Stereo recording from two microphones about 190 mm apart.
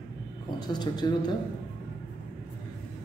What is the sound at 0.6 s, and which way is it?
Speech, 20° left (ahead or behind).